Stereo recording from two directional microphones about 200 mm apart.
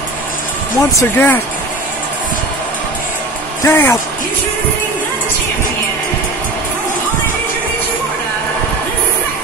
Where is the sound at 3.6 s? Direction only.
10° left (ahead or behind).